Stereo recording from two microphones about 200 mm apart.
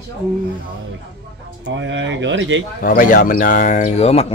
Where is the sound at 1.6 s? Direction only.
65° right (ahead or behind).